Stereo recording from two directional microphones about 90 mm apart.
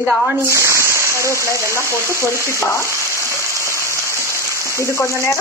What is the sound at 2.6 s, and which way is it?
Speech, 30° left (ahead or behind).